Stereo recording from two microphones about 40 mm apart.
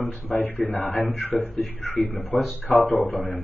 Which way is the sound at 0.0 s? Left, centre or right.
Left.